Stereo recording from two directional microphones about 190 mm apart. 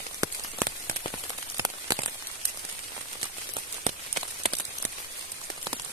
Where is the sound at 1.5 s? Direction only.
20° right (ahead or behind).